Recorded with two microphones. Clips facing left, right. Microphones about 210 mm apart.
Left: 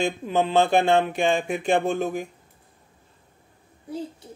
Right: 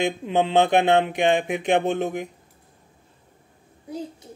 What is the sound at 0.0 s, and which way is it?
A man's voice, 20° right (ahead or behind).